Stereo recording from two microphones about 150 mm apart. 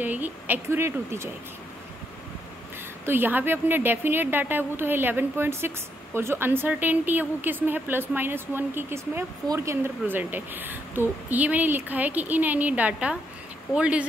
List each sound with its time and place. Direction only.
0.0 s a woman's voice: 10° right (ahead or behind)
3.1 s a woman's voice: 15° right (ahead or behind)